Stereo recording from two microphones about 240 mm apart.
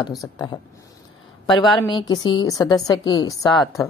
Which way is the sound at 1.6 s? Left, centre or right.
Centre.